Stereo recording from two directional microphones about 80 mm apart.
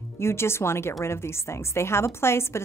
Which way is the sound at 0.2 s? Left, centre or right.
Left.